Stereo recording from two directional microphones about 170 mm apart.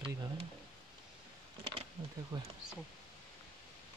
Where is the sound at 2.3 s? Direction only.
25° right (ahead or behind).